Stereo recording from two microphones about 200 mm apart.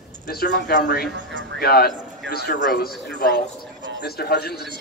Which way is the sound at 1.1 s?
65° right (ahead or behind).